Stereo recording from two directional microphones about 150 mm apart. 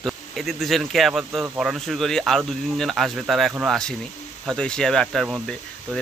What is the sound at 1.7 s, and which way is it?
Speech, centre (ahead or behind).